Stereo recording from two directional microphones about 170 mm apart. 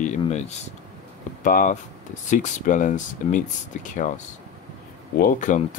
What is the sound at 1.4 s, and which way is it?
Speech, 50° left (ahead or behind).